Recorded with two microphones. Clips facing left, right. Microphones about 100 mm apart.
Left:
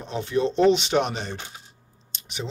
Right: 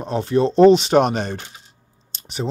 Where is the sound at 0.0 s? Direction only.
40° right (ahead or behind).